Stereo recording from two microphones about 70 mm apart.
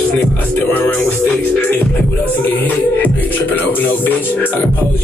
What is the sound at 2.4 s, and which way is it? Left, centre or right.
Music, left.